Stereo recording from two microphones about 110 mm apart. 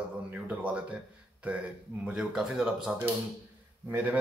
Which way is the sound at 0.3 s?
15° right (ahead or behind).